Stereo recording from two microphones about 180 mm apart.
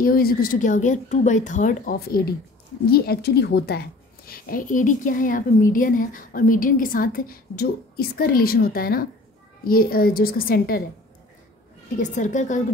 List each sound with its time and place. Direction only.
0.0 s a woman's voice: 55° left (ahead or behind)
12.0 s speech: 45° left (ahead or behind)